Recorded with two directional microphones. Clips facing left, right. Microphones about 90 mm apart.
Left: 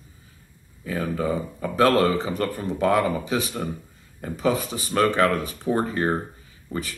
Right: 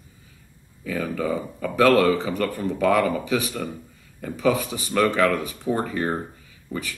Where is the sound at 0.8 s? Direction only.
30° left (ahead or behind).